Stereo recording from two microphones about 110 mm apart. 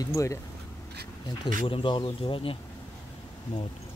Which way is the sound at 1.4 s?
55° left (ahead or behind).